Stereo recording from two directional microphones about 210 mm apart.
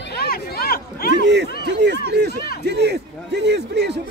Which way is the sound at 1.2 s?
55° right (ahead or behind).